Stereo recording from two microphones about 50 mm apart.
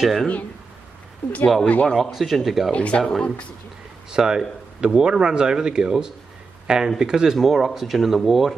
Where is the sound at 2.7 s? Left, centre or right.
Left.